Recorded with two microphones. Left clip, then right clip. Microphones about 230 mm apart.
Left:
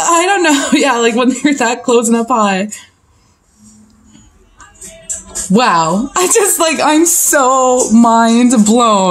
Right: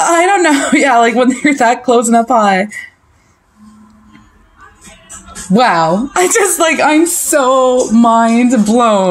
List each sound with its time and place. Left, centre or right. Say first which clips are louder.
0.0 s speech: right 1 dB; centre
5.5 s speech: right 1 dB; centre